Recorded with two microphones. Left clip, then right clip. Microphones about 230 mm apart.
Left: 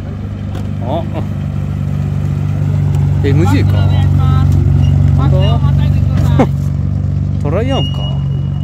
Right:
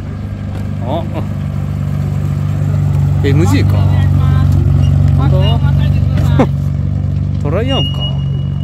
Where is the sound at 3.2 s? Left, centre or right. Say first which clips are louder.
Even; centre.